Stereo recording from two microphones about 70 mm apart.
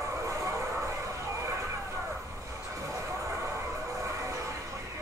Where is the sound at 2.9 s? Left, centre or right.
Right.